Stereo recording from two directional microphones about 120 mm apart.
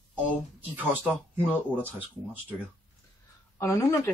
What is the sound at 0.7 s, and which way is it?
Speech, 15° right (ahead or behind).